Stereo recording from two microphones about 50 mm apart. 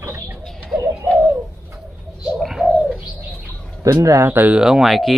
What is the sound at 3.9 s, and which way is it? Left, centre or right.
Speech, right.